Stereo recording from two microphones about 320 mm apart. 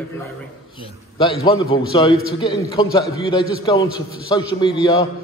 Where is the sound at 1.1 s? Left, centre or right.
Centre.